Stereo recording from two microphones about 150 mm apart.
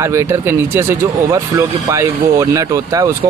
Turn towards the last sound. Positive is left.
turn(degrees=-20)  # may be behind; listen again after turning